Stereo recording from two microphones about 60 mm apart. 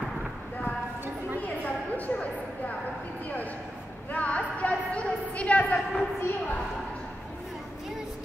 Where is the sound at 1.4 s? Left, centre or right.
Left.